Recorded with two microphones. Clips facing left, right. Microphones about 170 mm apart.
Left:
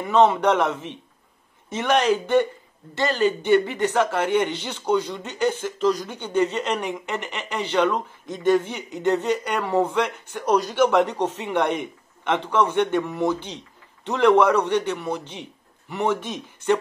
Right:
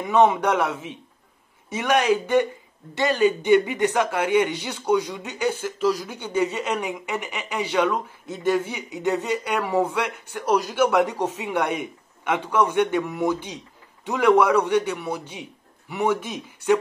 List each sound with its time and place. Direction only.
0.0 s a man's voice: 15° right (ahead or behind)